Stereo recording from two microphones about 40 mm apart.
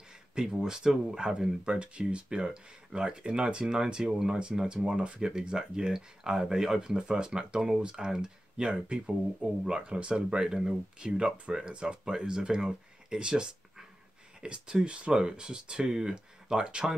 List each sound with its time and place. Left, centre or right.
0.3 s speech: centre